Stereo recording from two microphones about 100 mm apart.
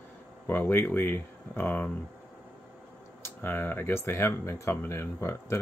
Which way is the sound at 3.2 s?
20° left (ahead or behind).